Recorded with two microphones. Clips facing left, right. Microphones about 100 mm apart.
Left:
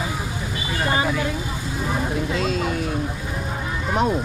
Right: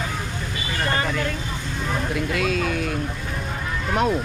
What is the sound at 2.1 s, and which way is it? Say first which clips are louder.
Speech: even; 25° left (ahead or behind).